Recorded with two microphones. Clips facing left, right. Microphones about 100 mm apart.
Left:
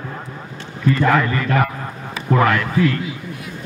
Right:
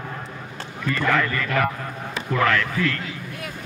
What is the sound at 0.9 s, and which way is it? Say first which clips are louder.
A man's voice: left 5 dB; 25° left (ahead or behind).